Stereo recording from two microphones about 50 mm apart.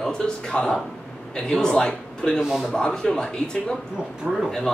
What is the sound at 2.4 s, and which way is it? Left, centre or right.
Speech, centre.